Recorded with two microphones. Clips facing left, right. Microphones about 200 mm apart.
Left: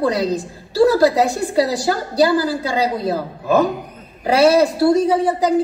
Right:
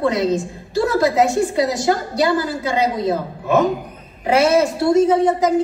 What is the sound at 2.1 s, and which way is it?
A woman's voice, 35° left (ahead or behind).